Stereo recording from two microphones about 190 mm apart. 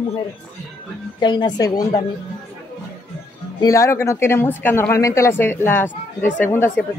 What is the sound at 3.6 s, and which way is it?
Speech, 15° left (ahead or behind).